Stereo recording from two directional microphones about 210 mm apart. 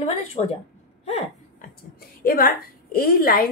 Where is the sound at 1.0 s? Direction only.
30° left (ahead or behind).